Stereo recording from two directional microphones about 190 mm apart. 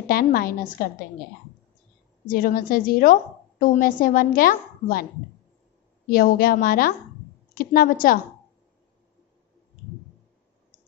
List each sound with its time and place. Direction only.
0.1 s a woman's voice: 50° left (ahead or behind)
2.2 s a woman's voice: 45° left (ahead or behind)
6.0 s a woman's voice: 50° left (ahead or behind)